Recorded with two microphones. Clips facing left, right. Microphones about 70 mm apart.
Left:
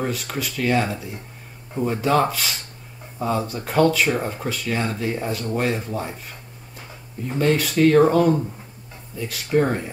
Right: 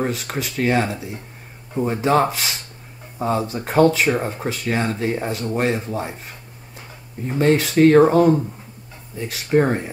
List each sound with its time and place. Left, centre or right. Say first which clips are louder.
0.0 s speech: right 2 dB; right
7.2 s speech: right 3 dB; right